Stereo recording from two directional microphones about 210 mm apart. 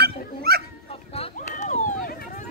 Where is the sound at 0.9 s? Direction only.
25° left (ahead or behind).